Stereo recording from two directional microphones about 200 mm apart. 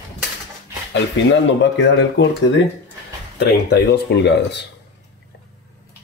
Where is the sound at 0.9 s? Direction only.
65° left (ahead or behind).